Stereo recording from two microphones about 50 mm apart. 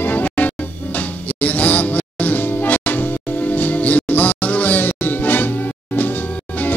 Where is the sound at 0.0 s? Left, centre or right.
Left.